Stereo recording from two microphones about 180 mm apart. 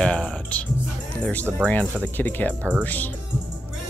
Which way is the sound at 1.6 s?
5° left (ahead or behind).